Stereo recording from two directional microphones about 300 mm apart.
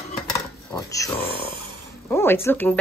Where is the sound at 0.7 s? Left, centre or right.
Centre.